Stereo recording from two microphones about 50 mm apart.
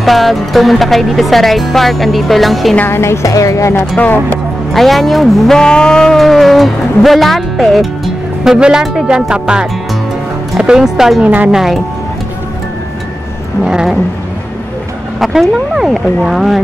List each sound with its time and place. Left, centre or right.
0.0 s speech: centre
2.9 s speech: left
4.0 s speech: left
4.7 s speech: centre
5.6 s music: centre
6.1 s speech: centre
8.5 s speech: centre
10.7 s speech: centre
11.2 s a woman's voice: right
11.5 s speech: centre
15.1 s speech: centre